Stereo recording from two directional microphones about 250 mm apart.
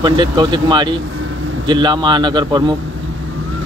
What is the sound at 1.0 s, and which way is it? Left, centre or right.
Vehicle, right.